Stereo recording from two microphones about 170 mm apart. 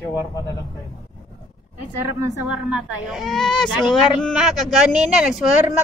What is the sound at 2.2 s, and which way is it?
A woman's voice, 15° right (ahead or behind).